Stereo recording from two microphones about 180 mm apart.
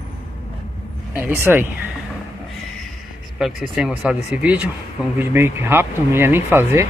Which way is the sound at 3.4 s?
Centre (ahead or behind).